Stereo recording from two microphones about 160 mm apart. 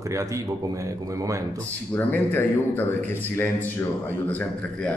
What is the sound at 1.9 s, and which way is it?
A man's voice, 10° left (ahead or behind).